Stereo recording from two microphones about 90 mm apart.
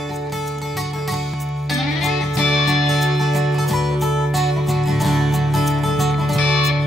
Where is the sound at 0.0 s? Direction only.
Centre (ahead or behind).